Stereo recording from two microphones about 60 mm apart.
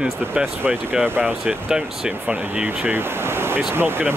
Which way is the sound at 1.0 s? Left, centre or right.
Right.